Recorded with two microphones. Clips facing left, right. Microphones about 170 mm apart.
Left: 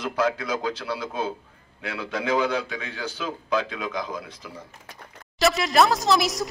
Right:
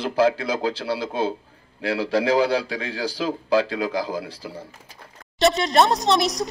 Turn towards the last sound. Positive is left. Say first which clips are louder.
# right 2 dB
turn(degrees=0)  # may be behind; listen again after turning